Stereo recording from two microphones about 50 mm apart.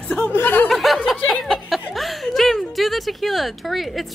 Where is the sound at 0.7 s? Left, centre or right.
Centre.